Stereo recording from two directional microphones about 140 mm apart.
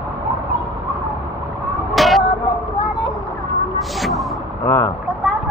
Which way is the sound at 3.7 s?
Centre (ahead or behind).